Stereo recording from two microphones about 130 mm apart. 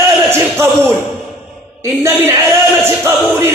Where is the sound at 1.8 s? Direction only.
20° right (ahead or behind).